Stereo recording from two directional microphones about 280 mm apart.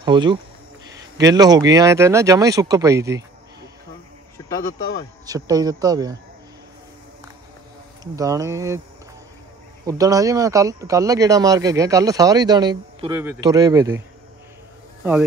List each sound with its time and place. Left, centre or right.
0.0 s speech: centre
5.2 s speech: centre
8.0 s speech: centre
9.8 s speech: centre